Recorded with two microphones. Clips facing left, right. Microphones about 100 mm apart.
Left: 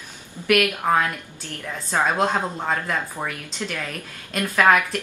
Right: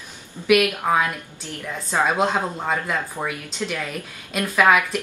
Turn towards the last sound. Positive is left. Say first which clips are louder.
# even
turn(degrees=-5)  # may be behind; listen again after turning